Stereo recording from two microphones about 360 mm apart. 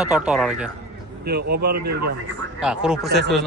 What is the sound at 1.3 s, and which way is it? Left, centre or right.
Speech, right.